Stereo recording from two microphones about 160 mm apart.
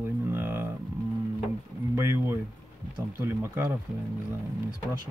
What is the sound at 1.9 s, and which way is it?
A man's voice, 15° right (ahead or behind).